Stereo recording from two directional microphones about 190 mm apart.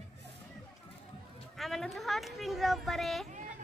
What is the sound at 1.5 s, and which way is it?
A woman's voice, centre (ahead or behind).